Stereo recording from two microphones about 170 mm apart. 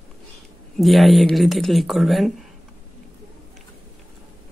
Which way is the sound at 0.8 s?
Centre (ahead or behind).